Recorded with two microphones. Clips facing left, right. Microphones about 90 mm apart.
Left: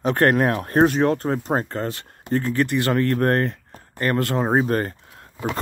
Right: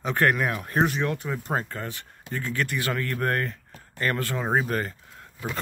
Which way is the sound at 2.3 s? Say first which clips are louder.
Left 11 dB; 55° left (ahead or behind).